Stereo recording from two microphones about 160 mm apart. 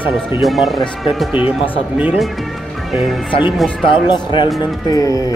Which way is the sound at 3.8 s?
30° left (ahead or behind).